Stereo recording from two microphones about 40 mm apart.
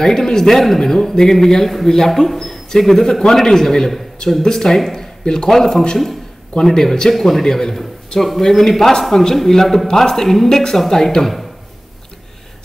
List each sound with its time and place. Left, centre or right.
0.0 s a man's voice: centre